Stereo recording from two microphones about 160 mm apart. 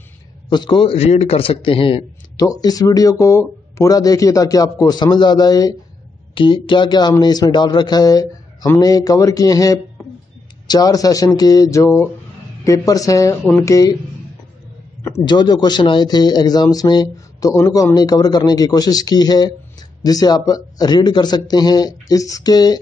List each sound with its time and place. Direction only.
0.5 s a man's voice: 30° left (ahead or behind)
2.4 s speech: 20° left (ahead or behind)
13.4 s speech: 5° left (ahead or behind)
13.7 s speech: 20° left (ahead or behind)
15.2 s speech: 25° left (ahead or behind)